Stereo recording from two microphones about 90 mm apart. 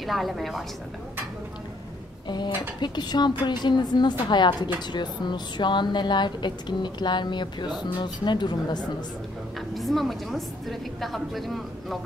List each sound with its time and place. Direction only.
0.0 s a woman's voice: centre (ahead or behind)
2.2 s a woman's voice: 55° left (ahead or behind)
9.8 s a woman's voice: centre (ahead or behind)